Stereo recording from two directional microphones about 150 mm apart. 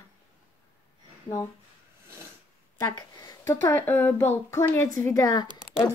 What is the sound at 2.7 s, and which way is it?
Speech, 20° left (ahead or behind).